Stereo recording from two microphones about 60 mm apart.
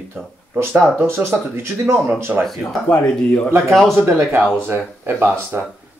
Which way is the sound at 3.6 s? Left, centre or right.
Centre.